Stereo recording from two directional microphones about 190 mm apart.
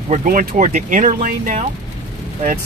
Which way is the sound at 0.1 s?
45° right (ahead or behind).